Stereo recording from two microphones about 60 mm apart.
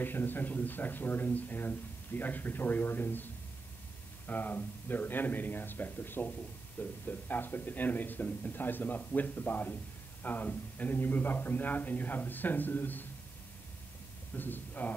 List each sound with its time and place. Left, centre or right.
0.0 s speech: left
4.3 s speech: left
14.3 s speech: left